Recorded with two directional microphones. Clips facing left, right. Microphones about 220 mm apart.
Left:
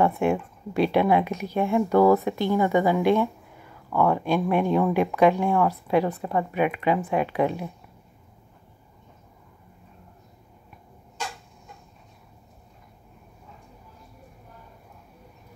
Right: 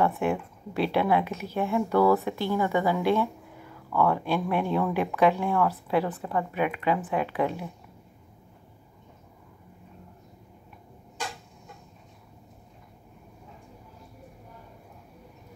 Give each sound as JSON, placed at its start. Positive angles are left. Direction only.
{"t": 0.0, "sound": "a woman's voice", "side_deg": 20}